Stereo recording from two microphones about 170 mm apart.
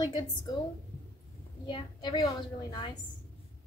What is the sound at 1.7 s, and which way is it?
A woman's voice, 25° left (ahead or behind).